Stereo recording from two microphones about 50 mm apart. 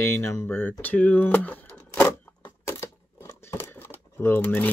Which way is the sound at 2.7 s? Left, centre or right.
Left.